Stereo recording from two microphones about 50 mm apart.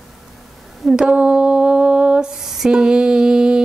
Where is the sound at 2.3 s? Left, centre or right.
Centre.